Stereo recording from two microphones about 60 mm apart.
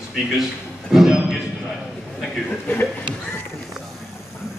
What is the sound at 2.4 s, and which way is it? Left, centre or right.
Speech, left.